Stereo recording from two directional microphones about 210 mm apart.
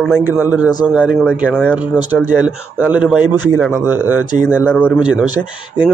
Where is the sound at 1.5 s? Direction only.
5° left (ahead or behind).